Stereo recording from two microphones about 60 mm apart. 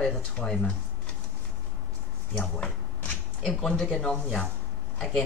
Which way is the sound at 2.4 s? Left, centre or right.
Left.